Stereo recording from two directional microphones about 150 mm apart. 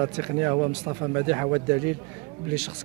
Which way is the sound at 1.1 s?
20° right (ahead or behind).